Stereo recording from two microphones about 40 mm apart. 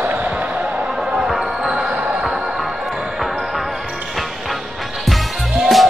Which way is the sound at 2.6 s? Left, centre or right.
Centre.